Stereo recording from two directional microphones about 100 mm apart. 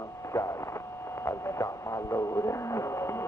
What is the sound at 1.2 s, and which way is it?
Music, 30° left (ahead or behind).